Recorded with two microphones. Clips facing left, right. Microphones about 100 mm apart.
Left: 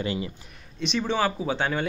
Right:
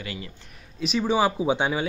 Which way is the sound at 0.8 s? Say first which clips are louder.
Right 3 dB; 5° right (ahead or behind).